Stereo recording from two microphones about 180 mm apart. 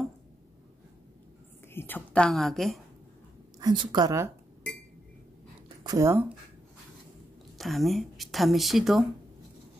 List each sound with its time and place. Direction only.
1.7 s speech: 10° left (ahead or behind)
3.5 s a woman's voice: 25° right (ahead or behind)
5.9 s speech: 15° right (ahead or behind)
7.5 s speech: centre (ahead or behind)